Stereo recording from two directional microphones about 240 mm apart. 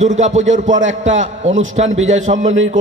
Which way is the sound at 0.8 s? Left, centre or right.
Right.